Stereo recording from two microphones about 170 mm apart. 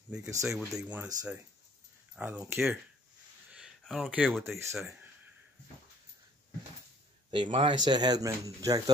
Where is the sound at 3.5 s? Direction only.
5° right (ahead or behind).